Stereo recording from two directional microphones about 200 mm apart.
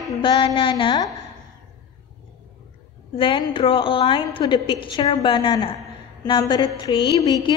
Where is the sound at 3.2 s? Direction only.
25° left (ahead or behind).